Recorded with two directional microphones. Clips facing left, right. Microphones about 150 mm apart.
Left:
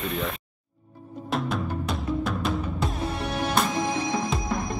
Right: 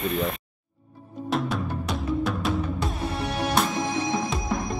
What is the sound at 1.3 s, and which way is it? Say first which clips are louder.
Music: right 1 dB; centre (ahead or behind).